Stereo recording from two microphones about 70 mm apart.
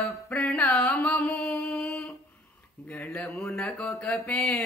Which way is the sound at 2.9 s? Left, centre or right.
Left.